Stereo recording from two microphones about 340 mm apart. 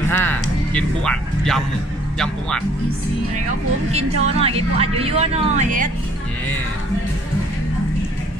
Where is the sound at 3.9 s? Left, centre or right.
Centre.